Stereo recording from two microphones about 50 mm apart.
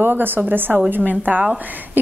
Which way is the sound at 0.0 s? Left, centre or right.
Right.